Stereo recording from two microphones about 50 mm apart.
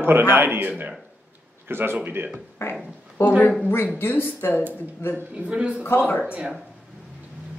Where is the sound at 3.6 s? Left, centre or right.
Left.